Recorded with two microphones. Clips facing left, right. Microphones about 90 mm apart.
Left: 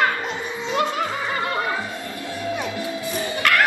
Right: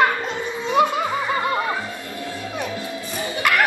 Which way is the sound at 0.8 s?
5° right (ahead or behind).